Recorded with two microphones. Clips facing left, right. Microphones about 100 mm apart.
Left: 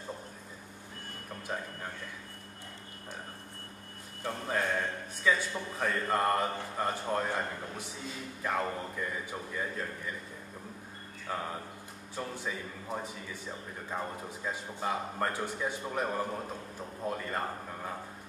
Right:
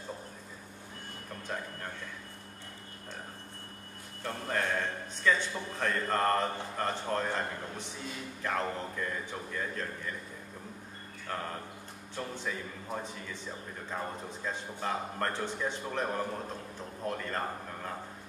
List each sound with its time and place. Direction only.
1.5 s a man's voice: 10° left (ahead or behind)
4.2 s a man's voice: 10° left (ahead or behind)
11.2 s a man's voice: 5° left (ahead or behind)